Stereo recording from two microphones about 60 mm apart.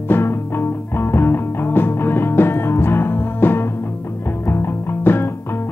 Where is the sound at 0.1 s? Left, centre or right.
Left.